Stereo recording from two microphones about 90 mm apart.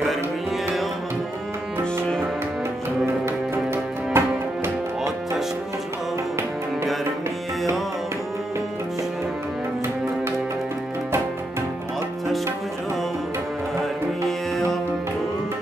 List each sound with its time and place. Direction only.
0.1 s music: centre (ahead or behind)
3.3 s music: 25° right (ahead or behind)